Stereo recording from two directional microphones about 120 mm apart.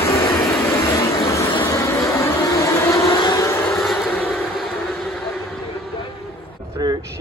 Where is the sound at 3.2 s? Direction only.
25° left (ahead or behind).